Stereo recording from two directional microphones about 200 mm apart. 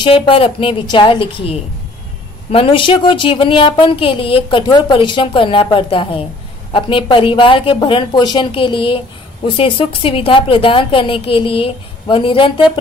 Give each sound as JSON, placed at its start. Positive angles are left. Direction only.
{"t": 0.0, "sound": "speech", "side_deg": 25}